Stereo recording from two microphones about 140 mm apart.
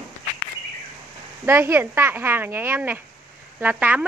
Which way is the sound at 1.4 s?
15° right (ahead or behind).